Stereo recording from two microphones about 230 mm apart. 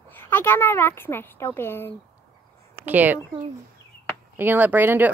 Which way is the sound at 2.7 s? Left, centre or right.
Centre.